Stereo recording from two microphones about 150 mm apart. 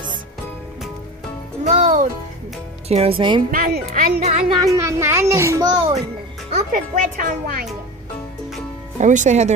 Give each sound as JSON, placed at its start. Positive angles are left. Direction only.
{"t": 1.6, "sound": "music", "side_deg": -50}
{"t": 2.9, "sound": "speech", "side_deg": -40}
{"t": 3.5, "sound": "speech", "side_deg": -70}
{"t": 4.2, "sound": "speech", "side_deg": -45}
{"t": 4.7, "sound": "a child's voice", "side_deg": -20}
{"t": 6.5, "sound": "a child's voice", "side_deg": -60}
{"t": 8.9, "sound": "speech", "side_deg": -55}